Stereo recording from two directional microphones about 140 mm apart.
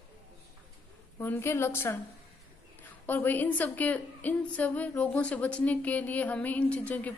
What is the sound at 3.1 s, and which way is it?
A woman's voice, 15° left (ahead or behind).